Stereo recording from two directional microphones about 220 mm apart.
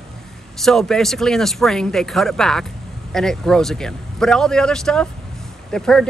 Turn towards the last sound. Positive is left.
turn(degrees=5)  # may be behind; listen again after turning